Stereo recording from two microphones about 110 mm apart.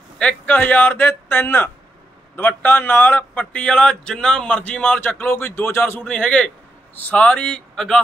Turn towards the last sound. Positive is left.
turn(degrees=5)  # may be behind; listen again after turning